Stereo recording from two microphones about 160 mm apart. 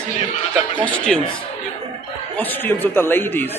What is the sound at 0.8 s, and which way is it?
Speech, 5° left (ahead or behind).